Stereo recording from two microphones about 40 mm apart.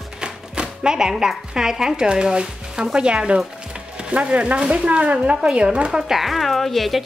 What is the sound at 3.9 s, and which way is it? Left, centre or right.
Music, right.